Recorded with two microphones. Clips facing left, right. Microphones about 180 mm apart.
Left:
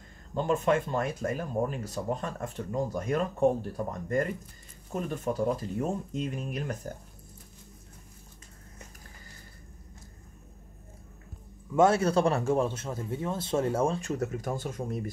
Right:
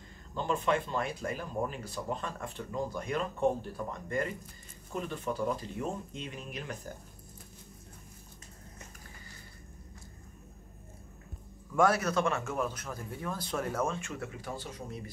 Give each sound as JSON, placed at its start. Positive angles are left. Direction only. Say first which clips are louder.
{"t": 0.3, "sound": "speech", "louder": "left 4 dB", "side_deg": 45}
{"t": 11.7, "sound": "a man's voice", "louder": "left 4 dB", "side_deg": 25}